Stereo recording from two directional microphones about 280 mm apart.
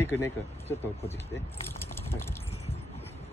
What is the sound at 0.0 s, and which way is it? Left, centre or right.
Speech, centre.